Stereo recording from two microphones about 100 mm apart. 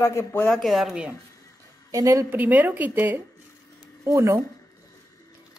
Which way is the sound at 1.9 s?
35° right (ahead or behind).